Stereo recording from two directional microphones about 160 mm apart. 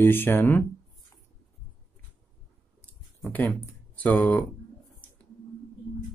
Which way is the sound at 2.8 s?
10° left (ahead or behind).